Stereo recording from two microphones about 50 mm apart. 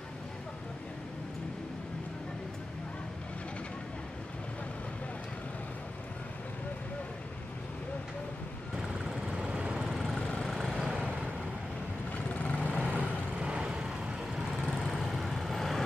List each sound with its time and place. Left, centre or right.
9.4 s vehicle: right
9.8 s vehicle: centre
10.8 s vehicle: centre
12.1 s vehicle: left
12.8 s vehicle: right
14.6 s vehicle: centre